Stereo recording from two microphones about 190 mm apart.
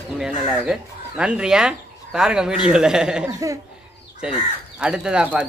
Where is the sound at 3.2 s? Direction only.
15° right (ahead or behind).